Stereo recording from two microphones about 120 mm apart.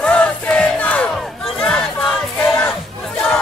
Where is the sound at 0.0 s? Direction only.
10° left (ahead or behind).